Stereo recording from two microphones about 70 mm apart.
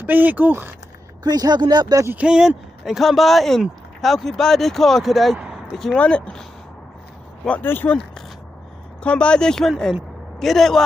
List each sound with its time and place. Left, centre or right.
0.0 s speech: right
1.2 s speech: right
2.1 s speech: centre
2.8 s speech: centre
5.9 s speech: centre
7.6 s speech: left
9.0 s speech: centre